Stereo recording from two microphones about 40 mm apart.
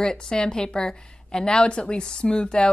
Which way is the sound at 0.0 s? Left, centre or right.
Centre.